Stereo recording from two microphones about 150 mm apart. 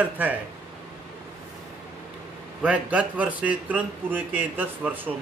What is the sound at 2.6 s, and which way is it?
A man's voice, 10° right (ahead or behind).